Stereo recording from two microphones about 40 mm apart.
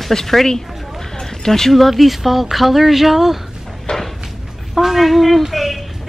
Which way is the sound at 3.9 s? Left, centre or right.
Left.